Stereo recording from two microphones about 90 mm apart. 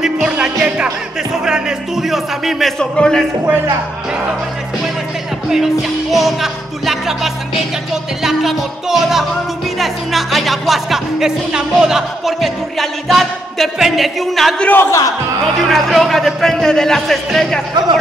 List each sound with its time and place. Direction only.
0.0 s music: 10° right (ahead or behind); by 3.3 s 5° left (ahead or behind)
5.5 s music: 5° right (ahead or behind)
14.7 s speech: 25° left (ahead or behind)
15.7 s music: centre (ahead or behind)